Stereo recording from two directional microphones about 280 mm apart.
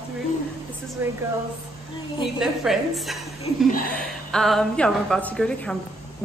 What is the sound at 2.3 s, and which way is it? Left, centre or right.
A woman's voice, centre.